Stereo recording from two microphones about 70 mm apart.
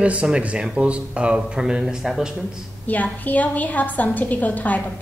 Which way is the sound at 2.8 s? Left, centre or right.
Left.